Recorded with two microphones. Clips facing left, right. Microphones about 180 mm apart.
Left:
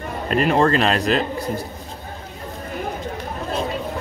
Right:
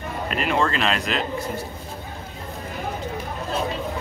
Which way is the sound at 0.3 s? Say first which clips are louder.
Left 6 dB; 40° left (ahead or behind).